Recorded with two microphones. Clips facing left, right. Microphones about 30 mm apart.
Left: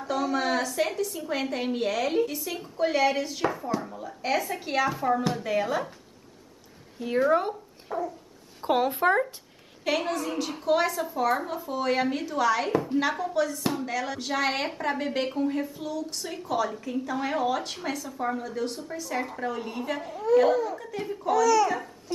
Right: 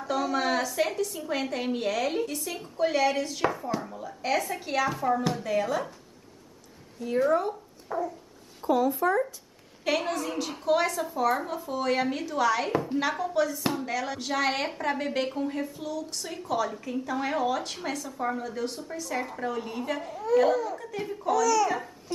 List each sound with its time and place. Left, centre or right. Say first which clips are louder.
0.0 s a woman's voice: even; centre
7.0 s speech: left 1 dB; left
7.9 s speech: even; centre
8.6 s speech: left 1 dB; left
9.8 s a woman's voice: left 1 dB; centre
21.6 s a child's voice: even; centre